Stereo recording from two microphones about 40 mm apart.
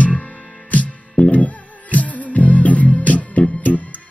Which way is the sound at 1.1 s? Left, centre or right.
Left.